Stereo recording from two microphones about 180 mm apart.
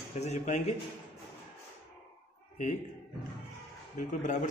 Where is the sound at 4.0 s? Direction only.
45° left (ahead or behind).